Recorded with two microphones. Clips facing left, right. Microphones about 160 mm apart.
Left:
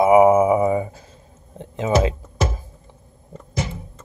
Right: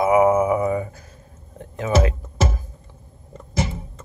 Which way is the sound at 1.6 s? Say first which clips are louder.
Left 2 dB; 20° left (ahead or behind).